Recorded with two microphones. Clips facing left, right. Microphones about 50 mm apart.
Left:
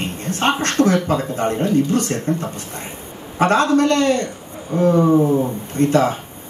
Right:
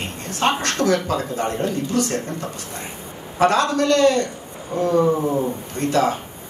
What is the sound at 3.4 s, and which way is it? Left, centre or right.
Speech, left.